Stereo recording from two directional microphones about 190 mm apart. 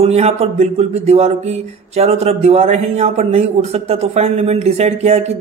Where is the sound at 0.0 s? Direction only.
35° right (ahead or behind).